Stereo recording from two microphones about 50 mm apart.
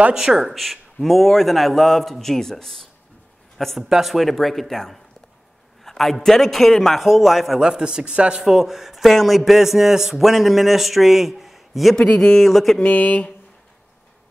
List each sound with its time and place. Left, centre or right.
0.1 s a man's voice: centre
7.6 s speech: centre
8.4 s a man's voice: centre
12.0 s speech: centre
12.8 s speech: left